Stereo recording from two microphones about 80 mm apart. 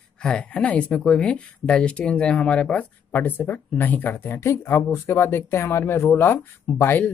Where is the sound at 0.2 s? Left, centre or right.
Centre.